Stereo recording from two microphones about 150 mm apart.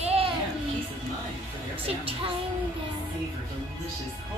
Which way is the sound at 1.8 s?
40° right (ahead or behind).